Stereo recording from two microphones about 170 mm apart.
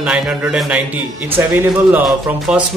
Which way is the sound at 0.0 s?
5° right (ahead or behind).